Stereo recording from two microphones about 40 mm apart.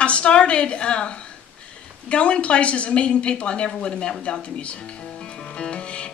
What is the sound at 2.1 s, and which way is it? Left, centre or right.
Speech, left.